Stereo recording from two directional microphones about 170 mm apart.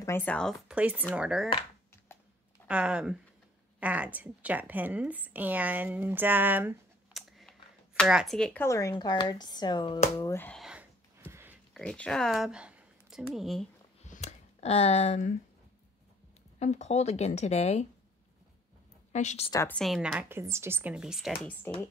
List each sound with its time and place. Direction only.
0.0 s speech: 10° left (ahead or behind)
0.7 s a woman's voice: 10° right (ahead or behind)
2.1 s a sound: 15° left (ahead or behind)
2.7 s a woman's voice: 5° right (ahead or behind)
7.2 s a sound: centre (ahead or behind)
8.0 s speech: centre (ahead or behind)
8.6 s speech: 20° left (ahead or behind)
10.6 s a sound: 5° right (ahead or behind)
11.7 s speech: 5° left (ahead or behind)
14.0 s a sound: 45° left (ahead or behind)
16.5 s speech: 40° left (ahead or behind)
19.1 s speech: 40° left (ahead or behind)
19.7 s speech: centre (ahead or behind)
21.7 s speech: 15° left (ahead or behind)